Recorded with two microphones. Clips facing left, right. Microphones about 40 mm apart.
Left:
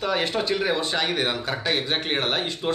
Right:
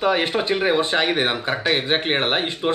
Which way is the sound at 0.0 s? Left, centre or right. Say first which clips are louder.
Right 4 dB; right.